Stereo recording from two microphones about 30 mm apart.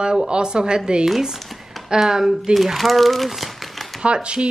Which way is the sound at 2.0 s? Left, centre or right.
Centre.